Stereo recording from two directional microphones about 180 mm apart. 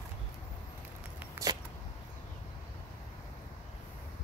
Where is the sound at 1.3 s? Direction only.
20° right (ahead or behind).